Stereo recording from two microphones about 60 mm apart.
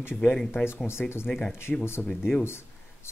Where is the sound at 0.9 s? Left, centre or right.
Left.